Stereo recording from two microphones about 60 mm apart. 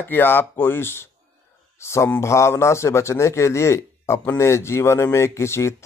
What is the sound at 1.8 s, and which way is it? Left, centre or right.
Speech, left.